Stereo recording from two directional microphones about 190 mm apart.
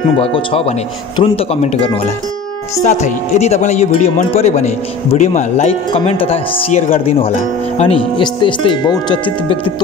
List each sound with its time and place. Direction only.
0.2 s speech: 30° left (ahead or behind)